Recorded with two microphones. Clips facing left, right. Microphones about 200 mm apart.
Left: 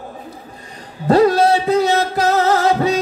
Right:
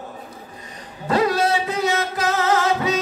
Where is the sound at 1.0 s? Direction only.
35° left (ahead or behind).